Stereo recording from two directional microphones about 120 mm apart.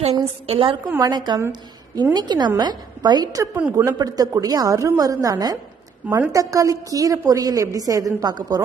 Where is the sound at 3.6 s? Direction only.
15° right (ahead or behind).